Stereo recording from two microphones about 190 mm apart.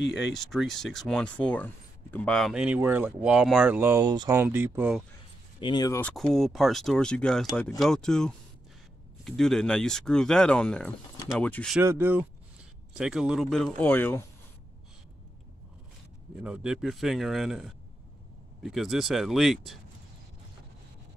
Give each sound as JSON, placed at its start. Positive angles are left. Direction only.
{"t": 0.3, "sound": "speech", "side_deg": 0}
{"t": 5.6, "sound": "speech", "side_deg": 25}
{"t": 5.9, "sound": "speech", "side_deg": 5}
{"t": 11.8, "sound": "speech", "side_deg": -10}
{"t": 16.4, "sound": "speech", "side_deg": -5}